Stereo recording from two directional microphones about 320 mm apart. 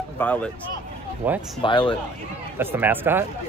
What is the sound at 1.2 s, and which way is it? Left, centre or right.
Speech, centre.